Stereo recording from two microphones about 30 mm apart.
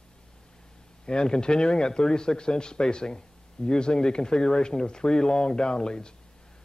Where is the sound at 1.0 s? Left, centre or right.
Left.